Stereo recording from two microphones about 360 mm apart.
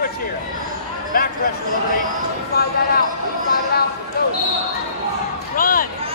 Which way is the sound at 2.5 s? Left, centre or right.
Left.